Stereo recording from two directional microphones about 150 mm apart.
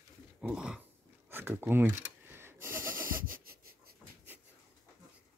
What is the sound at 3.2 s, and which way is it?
Wheeze, 70° right (ahead or behind).